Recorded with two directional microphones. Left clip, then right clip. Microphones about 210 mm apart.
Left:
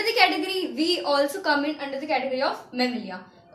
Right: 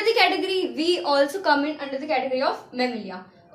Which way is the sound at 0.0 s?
25° right (ahead or behind).